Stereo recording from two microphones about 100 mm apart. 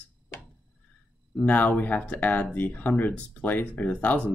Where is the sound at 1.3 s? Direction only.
15° left (ahead or behind).